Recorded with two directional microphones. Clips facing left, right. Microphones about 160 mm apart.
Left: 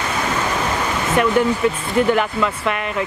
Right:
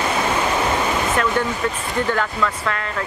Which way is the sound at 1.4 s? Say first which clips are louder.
Left 5 dB; 15° left (ahead or behind).